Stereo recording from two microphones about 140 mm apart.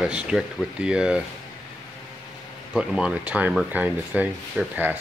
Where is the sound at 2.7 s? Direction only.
5° right (ahead or behind).